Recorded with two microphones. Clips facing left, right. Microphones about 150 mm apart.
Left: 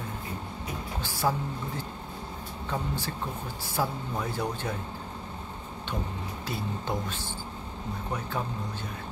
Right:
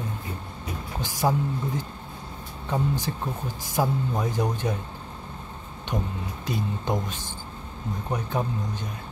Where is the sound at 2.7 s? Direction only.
15° right (ahead or behind).